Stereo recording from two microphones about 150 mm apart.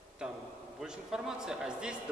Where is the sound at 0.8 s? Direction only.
5° right (ahead or behind).